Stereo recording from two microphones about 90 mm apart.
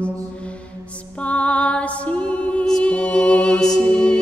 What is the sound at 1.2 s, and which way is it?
Music, 15° left (ahead or behind).